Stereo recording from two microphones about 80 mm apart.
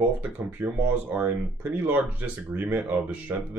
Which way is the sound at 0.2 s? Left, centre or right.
Centre.